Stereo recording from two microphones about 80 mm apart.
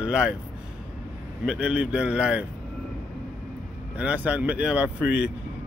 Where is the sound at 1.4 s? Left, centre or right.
Centre.